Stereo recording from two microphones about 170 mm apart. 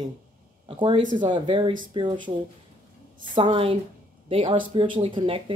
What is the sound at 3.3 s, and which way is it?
Speech, 30° right (ahead or behind).